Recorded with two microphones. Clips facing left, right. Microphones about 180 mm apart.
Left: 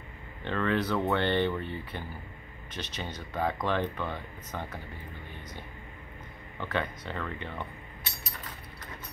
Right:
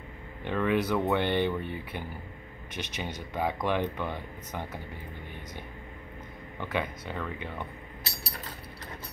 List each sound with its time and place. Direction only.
0.4 s speech: 15° right (ahead or behind)
6.6 s speech: 10° right (ahead or behind)
8.0 s a sound: 35° right (ahead or behind)